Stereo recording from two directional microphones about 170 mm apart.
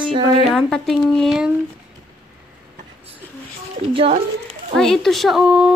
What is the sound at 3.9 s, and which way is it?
Speech, 35° right (ahead or behind).